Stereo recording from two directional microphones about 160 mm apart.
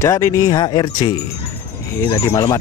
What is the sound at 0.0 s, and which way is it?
Speech, 20° left (ahead or behind).